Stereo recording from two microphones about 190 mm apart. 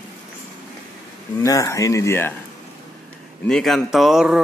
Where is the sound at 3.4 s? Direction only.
Centre (ahead or behind).